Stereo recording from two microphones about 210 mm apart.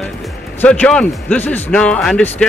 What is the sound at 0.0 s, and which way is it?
Speech, 5° left (ahead or behind).